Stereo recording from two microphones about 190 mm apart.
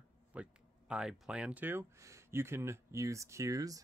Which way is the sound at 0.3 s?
5° right (ahead or behind).